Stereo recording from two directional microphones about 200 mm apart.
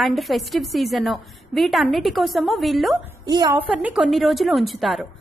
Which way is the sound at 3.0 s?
20° right (ahead or behind).